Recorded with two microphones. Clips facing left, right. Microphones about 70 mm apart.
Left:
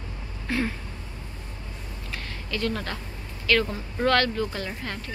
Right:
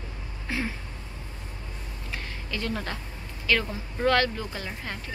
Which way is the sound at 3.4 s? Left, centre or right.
Centre.